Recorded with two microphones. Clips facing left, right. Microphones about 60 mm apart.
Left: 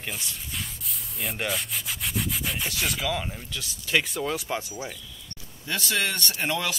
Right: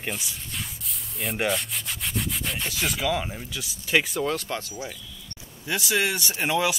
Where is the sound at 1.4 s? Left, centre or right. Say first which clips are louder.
Right 3 dB; centre.